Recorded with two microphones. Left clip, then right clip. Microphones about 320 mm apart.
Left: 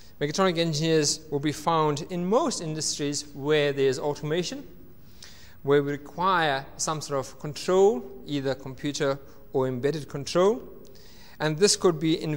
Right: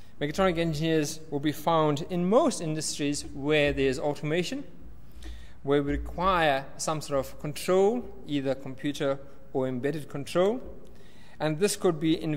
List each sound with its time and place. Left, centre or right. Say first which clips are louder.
0.2 s speech: left 2 dB; left
1.9 s a man's voice: left 1 dB; left
5.2 s speech: left 4 dB; left